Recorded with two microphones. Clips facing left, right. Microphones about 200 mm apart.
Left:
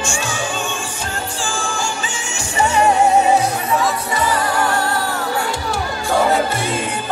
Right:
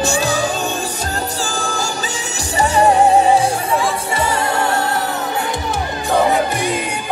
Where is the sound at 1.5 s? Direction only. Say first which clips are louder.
Right 1 dB; 40° right (ahead or behind).